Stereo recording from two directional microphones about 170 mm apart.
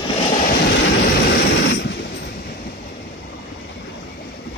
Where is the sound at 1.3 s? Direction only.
80° left.